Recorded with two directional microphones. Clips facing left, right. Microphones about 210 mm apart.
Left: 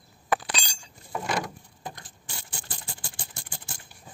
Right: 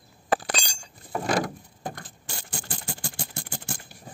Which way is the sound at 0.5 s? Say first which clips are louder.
Right 3 dB; 50° right (ahead or behind).